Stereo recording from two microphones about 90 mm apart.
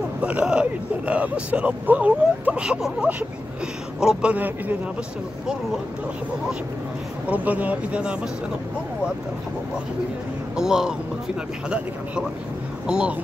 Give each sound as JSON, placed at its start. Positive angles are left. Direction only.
{"t": 0.2, "sound": "speech", "side_deg": -15}
{"t": 7.2, "sound": "speech", "side_deg": -15}
{"t": 10.5, "sound": "speech", "side_deg": -5}
{"t": 12.8, "sound": "speech", "side_deg": -10}